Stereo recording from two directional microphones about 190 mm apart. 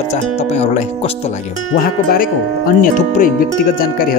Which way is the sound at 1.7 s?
50° left (ahead or behind).